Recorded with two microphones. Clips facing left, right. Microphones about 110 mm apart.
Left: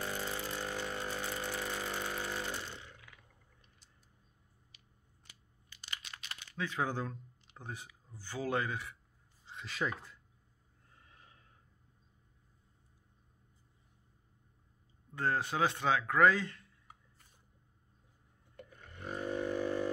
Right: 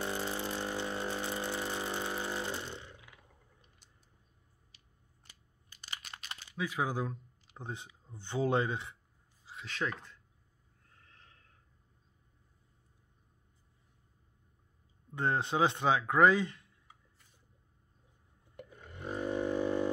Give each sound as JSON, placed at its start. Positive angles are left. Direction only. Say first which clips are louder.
{"t": 0.0, "sound": "vehicle", "louder": "right 3 dB", "side_deg": -25}
{"t": 5.7, "sound": "crunch", "louder": "right 1 dB", "side_deg": -40}
{"t": 6.5, "sound": "speech", "louder": "right 2 dB", "side_deg": -10}
{"t": 7.5, "sound": "speech", "louder": "right 3 dB", "side_deg": -20}
{"t": 9.5, "sound": "speech", "louder": "even", "side_deg": 0}
{"t": 11.1, "sound": "snort", "louder": "left 1 dB", "side_deg": 10}
{"t": 15.1, "sound": "speech", "louder": "right 2 dB", "side_deg": -20}
{"t": 18.6, "sound": "a sound", "louder": "right 3 dB", "side_deg": -15}
{"t": 19.3, "sound": "didgeridoo", "louder": "right 3 dB", "side_deg": -20}